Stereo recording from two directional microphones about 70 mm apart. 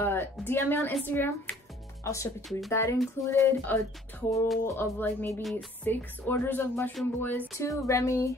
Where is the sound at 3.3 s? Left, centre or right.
Left.